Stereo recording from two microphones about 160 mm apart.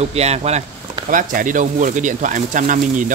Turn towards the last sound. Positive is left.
turn(degrees=-55)  # may be behind; listen again after turning